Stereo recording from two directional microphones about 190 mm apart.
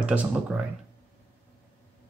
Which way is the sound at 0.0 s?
5° right (ahead or behind).